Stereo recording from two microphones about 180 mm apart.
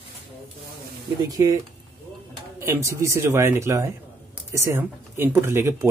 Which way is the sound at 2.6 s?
15° right (ahead or behind).